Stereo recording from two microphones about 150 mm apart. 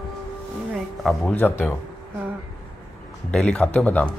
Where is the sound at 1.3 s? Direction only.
15° left (ahead or behind).